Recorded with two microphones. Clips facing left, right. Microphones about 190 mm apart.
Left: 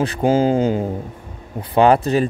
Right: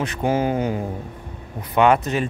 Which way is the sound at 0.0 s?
30° left (ahead or behind).